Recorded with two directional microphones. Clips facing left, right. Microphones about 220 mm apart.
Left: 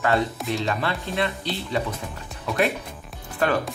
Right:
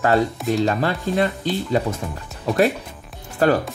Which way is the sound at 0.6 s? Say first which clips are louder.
Right 6 dB; 40° right (ahead or behind).